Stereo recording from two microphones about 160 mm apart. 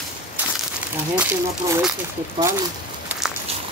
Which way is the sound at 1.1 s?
10° right (ahead or behind).